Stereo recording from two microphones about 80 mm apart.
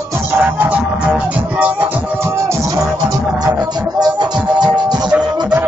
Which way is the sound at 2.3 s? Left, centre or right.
Right.